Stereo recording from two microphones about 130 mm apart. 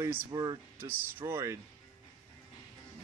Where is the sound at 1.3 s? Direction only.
20° right (ahead or behind).